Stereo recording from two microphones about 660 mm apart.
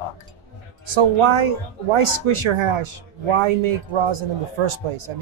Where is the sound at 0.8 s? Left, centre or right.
Right.